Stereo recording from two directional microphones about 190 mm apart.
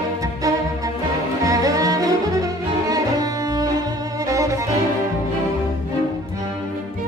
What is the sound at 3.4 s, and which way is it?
Music, 20° right (ahead or behind).